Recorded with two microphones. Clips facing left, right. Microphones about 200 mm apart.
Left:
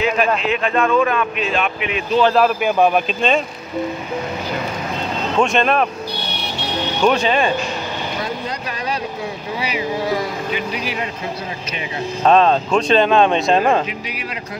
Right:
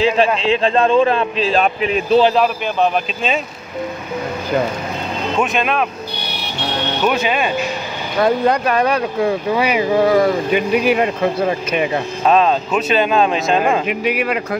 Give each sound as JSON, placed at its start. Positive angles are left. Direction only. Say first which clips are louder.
{"t": 0.0, "sound": "speech", "louder": "right 3 dB", "side_deg": -30}
{"t": 2.3, "sound": "speech", "louder": "left 1 dB", "side_deg": 5}
{"t": 5.4, "sound": "speech", "louder": "left 2 dB", "side_deg": -5}
{"t": 7.0, "sound": "speech", "louder": "left 2 dB", "side_deg": -5}
{"t": 8.2, "sound": "speech", "louder": "right 11 dB", "side_deg": -60}
{"t": 12.3, "sound": "speech", "louder": "left 1 dB", "side_deg": -5}
{"t": 13.8, "sound": "speech", "louder": "right 10 dB", "side_deg": -55}